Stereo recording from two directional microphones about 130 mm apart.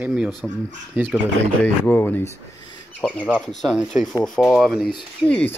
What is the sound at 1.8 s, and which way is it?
Speech, 15° left (ahead or behind).